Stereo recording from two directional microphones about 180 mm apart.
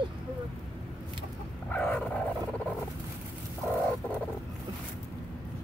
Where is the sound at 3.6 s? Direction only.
5° left (ahead or behind).